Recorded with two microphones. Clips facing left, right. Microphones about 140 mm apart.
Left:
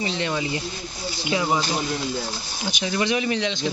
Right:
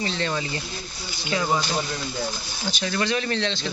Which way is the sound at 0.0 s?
15° left (ahead or behind).